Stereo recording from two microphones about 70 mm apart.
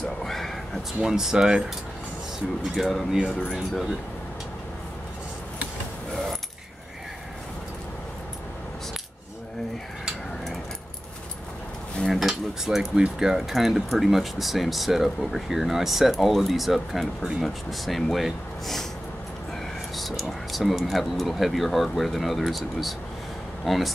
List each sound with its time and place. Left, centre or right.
0.0 s a sound: centre
1.0 s speech: centre
2.7 s speech: centre
12.1 s cutlery: centre
13.0 s speech: centre
20.0 s speech: centre